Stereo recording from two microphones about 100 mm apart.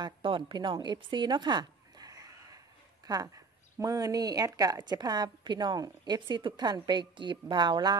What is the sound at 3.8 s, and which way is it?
A woman's voice, 35° right (ahead or behind).